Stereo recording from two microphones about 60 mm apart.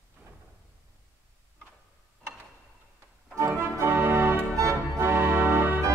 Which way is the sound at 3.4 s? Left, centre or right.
Right.